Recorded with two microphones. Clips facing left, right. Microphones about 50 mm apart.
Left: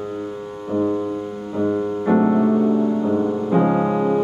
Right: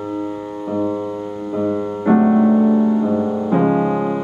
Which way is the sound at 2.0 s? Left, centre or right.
Centre.